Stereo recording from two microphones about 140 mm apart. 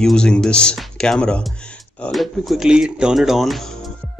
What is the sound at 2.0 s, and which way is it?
Music, centre (ahead or behind).